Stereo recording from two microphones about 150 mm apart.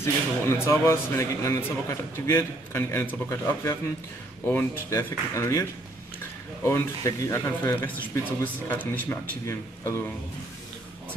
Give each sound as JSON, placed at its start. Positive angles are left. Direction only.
{"t": 0.0, "sound": "speech", "side_deg": 20}